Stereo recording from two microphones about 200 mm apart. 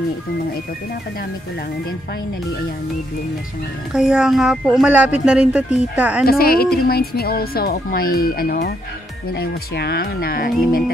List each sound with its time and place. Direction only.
3.9 s a woman's voice: 5° right (ahead or behind)
6.2 s speech: 50° left (ahead or behind)